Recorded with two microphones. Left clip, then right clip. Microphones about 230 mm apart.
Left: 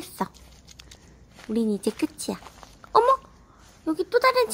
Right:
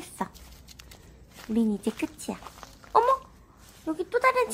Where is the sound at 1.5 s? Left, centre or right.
Centre.